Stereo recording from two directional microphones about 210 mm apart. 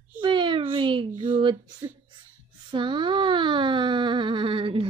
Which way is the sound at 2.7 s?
20° right (ahead or behind).